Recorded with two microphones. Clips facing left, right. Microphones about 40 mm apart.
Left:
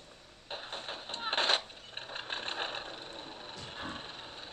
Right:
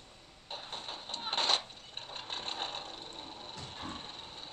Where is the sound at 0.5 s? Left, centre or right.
Centre.